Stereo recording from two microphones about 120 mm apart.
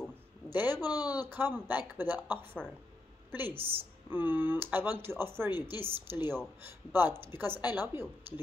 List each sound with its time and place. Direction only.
0.5 s speech: 15° right (ahead or behind)
0.8 s speech: 35° left (ahead or behind)
1.1 s a woman's voice: 15° right (ahead or behind)